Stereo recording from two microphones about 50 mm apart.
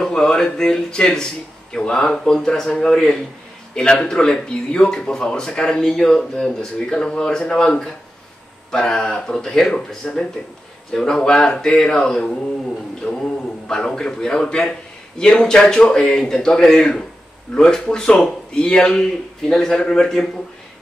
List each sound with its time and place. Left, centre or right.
0.0 s a man's voice: centre
13.0 s a sound: centre
13.7 s a man's voice: centre